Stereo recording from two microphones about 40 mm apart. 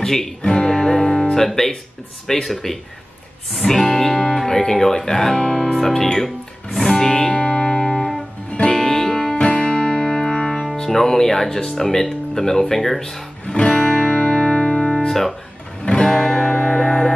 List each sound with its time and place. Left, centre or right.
0.0 s speech: centre
0.4 s guitar: left
2.4 s speech: centre
4.4 s guitar: centre
4.7 s speech: centre
5.8 s speech: centre
6.1 s music: centre
10.8 s speech: centre
13.6 s guitar: left; by 15.3 s centre
15.8 s music: left
16.1 s music: centre